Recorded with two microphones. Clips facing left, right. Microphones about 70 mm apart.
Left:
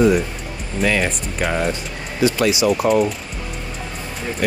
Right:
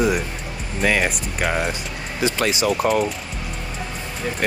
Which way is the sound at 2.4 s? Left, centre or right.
Right.